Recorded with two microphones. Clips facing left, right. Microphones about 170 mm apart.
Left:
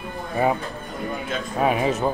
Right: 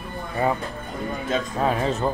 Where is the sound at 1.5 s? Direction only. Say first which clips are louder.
Left 5 dB; 10° left (ahead or behind).